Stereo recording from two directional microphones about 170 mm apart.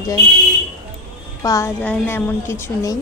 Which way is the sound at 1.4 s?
15° left (ahead or behind).